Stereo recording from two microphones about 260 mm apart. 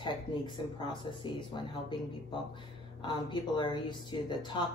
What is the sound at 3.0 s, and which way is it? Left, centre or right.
Speech, centre.